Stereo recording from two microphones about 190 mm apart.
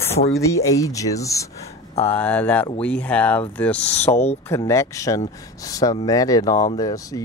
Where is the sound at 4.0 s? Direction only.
35° left (ahead or behind).